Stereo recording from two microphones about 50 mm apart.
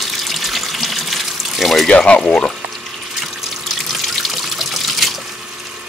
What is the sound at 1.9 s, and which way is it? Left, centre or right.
Speech, left.